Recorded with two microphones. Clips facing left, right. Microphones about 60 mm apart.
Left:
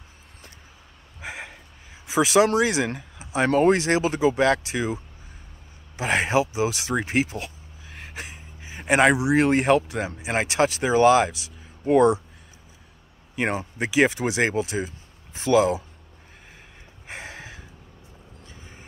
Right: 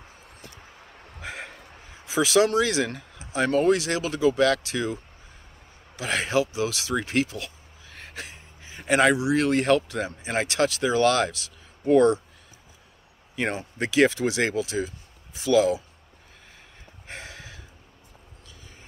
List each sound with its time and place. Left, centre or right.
1.2 s a sound: centre
2.0 s speech: left
8.1 s speech: centre
13.4 s speech: left
17.1 s a sound: left
18.5 s vehicle: left